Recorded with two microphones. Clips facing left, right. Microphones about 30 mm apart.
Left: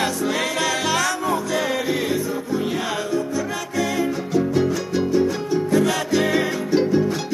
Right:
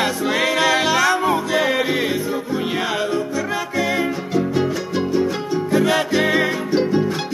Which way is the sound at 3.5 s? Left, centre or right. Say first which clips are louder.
Right 3 dB; right.